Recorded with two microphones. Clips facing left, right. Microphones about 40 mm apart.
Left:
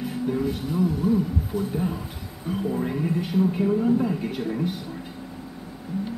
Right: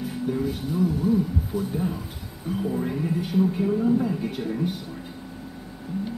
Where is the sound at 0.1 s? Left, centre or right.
Centre.